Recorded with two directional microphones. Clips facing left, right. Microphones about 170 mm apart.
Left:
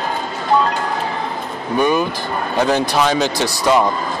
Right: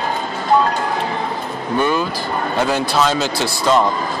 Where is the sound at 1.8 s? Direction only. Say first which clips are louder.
Left 3 dB; 15° left (ahead or behind).